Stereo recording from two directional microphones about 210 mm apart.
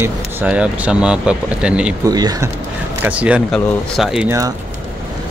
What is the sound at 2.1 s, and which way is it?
Speech, 20° right (ahead or behind).